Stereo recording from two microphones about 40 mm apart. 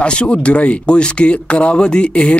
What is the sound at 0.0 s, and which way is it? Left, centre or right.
Speech, left.